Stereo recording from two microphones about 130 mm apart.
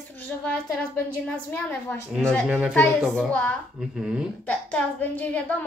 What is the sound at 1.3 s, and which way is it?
Speech, 15° left (ahead or behind).